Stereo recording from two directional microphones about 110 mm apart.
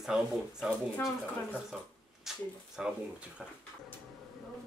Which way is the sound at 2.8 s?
5° right (ahead or behind).